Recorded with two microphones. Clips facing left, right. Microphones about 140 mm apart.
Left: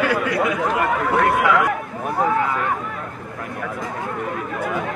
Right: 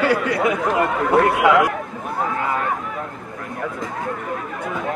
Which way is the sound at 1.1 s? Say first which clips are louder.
Right 3 dB; 25° right (ahead or behind).